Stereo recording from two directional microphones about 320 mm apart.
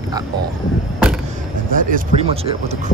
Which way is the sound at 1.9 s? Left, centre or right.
Centre.